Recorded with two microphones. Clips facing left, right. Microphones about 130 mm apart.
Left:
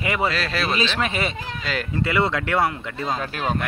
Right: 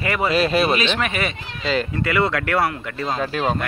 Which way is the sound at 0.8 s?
25° left (ahead or behind).